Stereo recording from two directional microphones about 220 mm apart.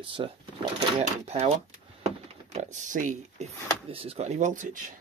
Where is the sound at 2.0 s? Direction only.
30° right (ahead or behind).